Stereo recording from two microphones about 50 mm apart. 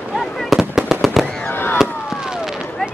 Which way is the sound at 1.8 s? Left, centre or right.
Centre.